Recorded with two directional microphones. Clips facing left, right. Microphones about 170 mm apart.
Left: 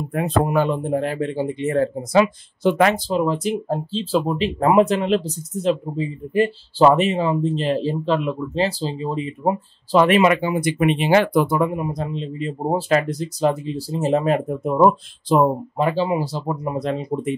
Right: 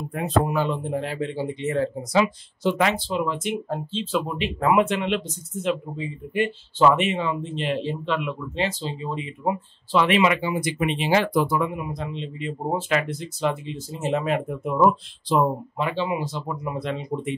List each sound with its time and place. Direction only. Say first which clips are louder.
0.1 s speech: left 3 dB; 55° left (ahead or behind); by 17.4 s 40° left (ahead or behind)